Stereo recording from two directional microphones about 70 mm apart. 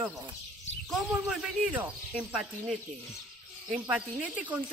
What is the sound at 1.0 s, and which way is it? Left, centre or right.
A man's voice, centre.